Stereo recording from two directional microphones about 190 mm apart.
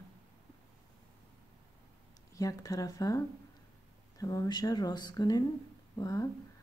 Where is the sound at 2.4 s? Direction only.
15° left (ahead or behind).